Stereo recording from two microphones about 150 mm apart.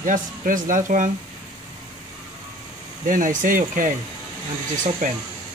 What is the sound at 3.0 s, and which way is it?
Speech, 60° right (ahead or behind).